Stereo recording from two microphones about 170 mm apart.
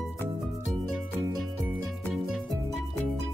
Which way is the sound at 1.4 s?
Centre (ahead or behind).